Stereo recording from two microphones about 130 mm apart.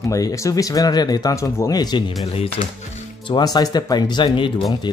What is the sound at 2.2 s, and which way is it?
Speech, 50° left (ahead or behind).